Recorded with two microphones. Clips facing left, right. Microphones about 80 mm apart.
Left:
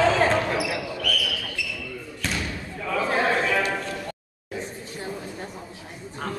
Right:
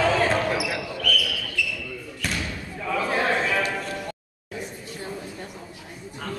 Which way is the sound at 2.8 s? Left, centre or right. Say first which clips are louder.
Left 1 dB; centre.